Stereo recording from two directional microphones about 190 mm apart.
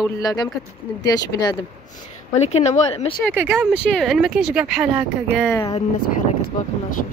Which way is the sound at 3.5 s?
5° left (ahead or behind).